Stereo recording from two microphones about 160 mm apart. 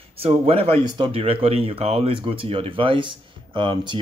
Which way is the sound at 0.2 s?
35° right (ahead or behind).